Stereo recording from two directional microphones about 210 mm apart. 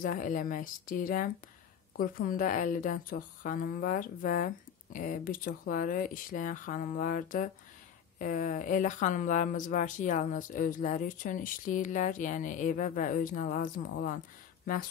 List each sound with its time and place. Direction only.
0.0 s speech: 40° left (ahead or behind)